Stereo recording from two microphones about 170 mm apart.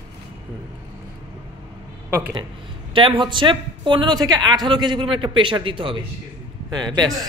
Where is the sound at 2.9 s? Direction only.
30° right (ahead or behind).